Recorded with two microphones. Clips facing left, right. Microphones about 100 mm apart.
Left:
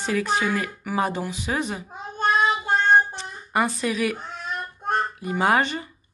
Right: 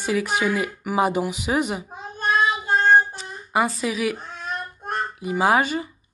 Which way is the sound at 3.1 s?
5° right (ahead or behind).